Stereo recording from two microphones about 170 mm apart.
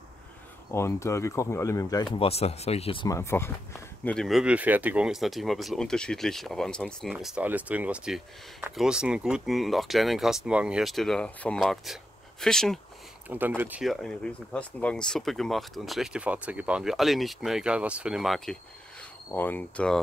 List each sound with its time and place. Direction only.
0.7 s speech: 15° left (ahead or behind)
2.1 s speech: 35° left (ahead or behind)
3.1 s speech: 15° left (ahead or behind)
13.6 s speech: 10° right (ahead or behind); by 20.0 s 10° left (ahead or behind)